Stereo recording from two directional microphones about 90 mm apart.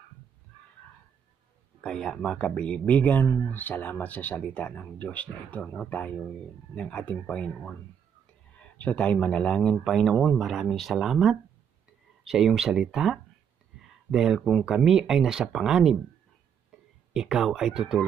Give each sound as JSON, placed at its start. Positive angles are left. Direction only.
{"t": 1.8, "sound": "speech", "side_deg": 5}
{"t": 8.7, "sound": "speech", "side_deg": 15}
{"t": 17.1, "sound": "speech", "side_deg": -5}